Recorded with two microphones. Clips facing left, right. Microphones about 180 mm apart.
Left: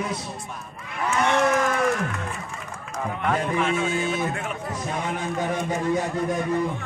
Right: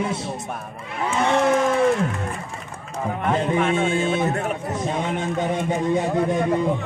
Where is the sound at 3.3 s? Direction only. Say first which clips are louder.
Right 3 dB; 25° right (ahead or behind).